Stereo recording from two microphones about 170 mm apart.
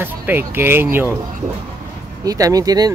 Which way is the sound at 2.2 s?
20° right (ahead or behind).